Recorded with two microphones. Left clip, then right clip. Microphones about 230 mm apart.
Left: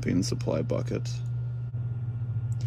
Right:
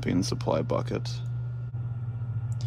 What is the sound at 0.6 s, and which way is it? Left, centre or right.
Speech, centre.